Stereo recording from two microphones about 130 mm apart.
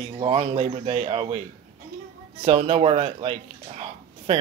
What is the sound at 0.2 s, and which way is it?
Speech, 50° right (ahead or behind).